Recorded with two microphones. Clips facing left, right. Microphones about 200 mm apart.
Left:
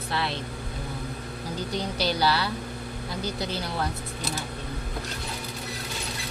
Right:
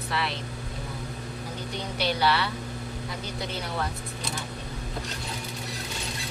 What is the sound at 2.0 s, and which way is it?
Speech, 35° left (ahead or behind).